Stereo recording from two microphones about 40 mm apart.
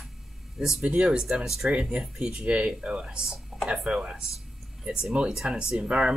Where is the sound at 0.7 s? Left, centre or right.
Right.